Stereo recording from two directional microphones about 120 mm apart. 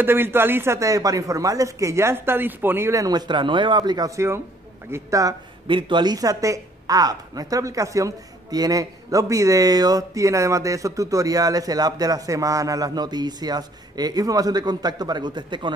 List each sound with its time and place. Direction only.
0.0 s speech: 20° right (ahead or behind)
5.7 s a woman's voice: 40° right (ahead or behind)